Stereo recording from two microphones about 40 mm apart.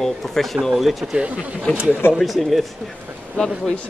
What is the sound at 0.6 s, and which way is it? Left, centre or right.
Speech, centre.